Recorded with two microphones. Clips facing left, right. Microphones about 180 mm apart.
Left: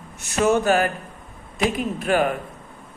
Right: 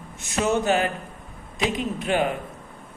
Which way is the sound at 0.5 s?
20° right (ahead or behind).